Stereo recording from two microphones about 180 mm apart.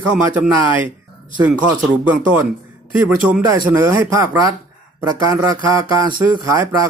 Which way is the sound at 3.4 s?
15° right (ahead or behind).